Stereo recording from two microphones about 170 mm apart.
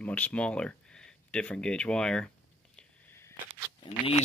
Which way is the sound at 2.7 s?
10° left (ahead or behind).